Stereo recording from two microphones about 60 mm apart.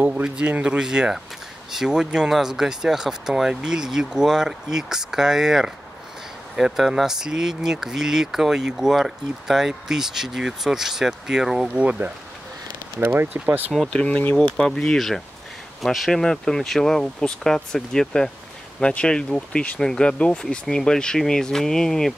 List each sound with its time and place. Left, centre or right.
0.0 s speech: centre
11.8 s speech: right
13.0 s speech: right
13.9 s speech: centre